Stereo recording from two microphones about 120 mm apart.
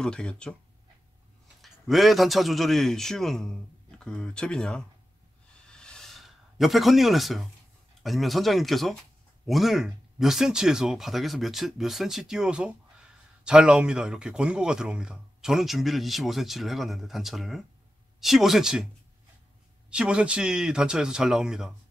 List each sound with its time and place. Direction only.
0.0 s speech: 5° left (ahead or behind)
1.6 s speech: centre (ahead or behind)
5.7 s a sound: 5° left (ahead or behind)
8.0 s speech: centre (ahead or behind)
19.9 s speech: 10° right (ahead or behind)